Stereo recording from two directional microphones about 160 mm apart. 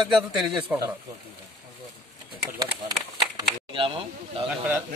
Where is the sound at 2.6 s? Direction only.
25° right (ahead or behind).